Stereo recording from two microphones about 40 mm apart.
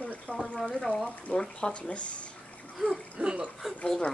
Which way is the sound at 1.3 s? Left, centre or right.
Centre.